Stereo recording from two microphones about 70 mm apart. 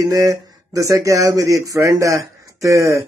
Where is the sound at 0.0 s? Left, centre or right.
Right.